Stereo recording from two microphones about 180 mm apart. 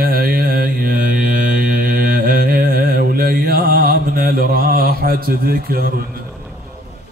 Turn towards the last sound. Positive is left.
turn(degrees=-55)  # may be behind; listen again after turning